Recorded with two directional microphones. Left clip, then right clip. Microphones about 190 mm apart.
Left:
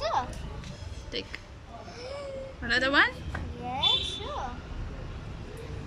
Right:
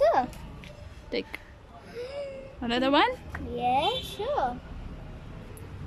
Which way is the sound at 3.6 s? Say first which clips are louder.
Right 3 dB; 55° right (ahead or behind).